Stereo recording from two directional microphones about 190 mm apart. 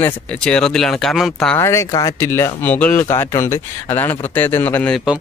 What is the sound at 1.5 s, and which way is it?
Speech, 15° left (ahead or behind).